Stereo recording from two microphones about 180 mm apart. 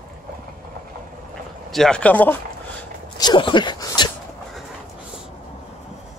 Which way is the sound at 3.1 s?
25° left (ahead or behind).